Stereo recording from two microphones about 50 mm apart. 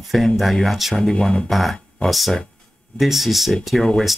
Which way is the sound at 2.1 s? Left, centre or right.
Centre.